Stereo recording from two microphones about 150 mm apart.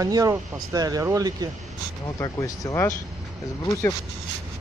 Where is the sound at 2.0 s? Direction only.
25° left (ahead or behind).